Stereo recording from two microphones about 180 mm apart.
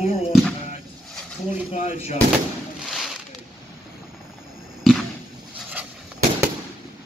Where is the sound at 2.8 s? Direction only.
Centre (ahead or behind).